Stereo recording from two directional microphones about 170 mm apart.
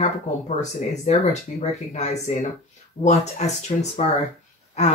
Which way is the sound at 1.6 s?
40° left (ahead or behind).